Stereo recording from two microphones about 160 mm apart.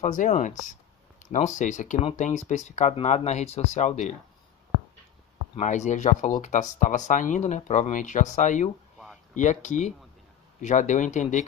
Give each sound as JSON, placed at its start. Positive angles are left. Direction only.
{"t": 0.0, "sound": "speech", "side_deg": 50}
{"t": 5.6, "sound": "speech", "side_deg": 50}